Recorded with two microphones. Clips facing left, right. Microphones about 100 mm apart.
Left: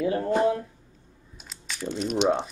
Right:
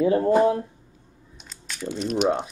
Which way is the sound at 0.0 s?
30° right (ahead or behind).